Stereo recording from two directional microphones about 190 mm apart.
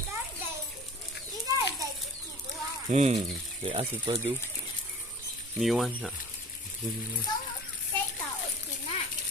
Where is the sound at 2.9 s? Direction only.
35° right (ahead or behind).